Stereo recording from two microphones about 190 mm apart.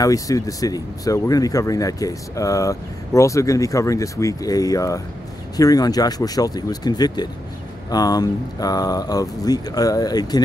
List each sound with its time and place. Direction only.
0.0 s speech: 20° left (ahead or behind)